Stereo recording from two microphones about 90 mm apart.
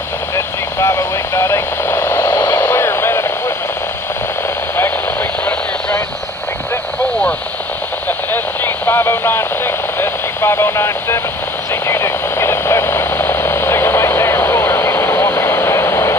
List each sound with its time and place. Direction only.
0.7 s radio: 30° left (ahead or behind)
8.3 s radio: 25° left (ahead or behind)
11.7 s a sound: 30° left (ahead or behind)